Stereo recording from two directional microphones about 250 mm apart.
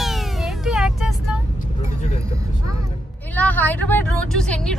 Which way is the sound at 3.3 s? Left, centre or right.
Centre.